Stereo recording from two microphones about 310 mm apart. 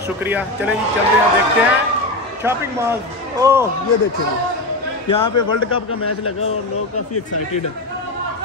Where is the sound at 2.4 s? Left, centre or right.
Centre.